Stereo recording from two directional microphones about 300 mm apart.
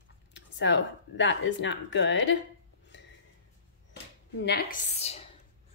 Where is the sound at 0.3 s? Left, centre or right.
Left.